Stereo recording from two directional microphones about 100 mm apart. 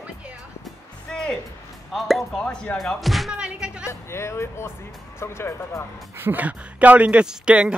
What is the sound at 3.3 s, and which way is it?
Speech, 10° right (ahead or behind).